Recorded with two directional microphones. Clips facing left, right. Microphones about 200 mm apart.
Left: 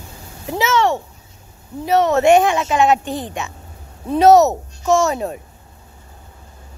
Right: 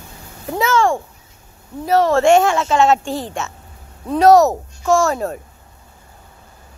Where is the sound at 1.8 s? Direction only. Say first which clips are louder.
Even; 20° left (ahead or behind).